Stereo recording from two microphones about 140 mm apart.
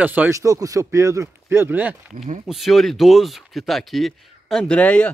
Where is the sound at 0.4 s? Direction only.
25° right (ahead or behind).